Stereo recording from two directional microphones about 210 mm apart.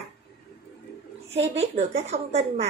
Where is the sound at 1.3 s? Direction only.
30° right (ahead or behind).